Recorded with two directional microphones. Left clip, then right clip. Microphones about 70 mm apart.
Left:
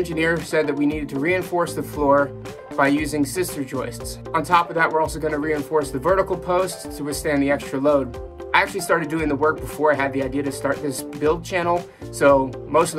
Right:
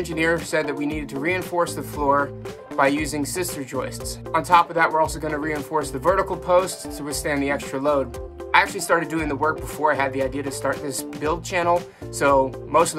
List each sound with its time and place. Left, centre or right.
0.0 s speech: right
2.8 s speech: right